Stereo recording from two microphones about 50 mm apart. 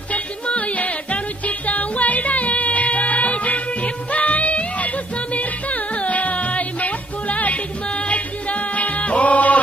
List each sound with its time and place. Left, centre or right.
0.1 s music: left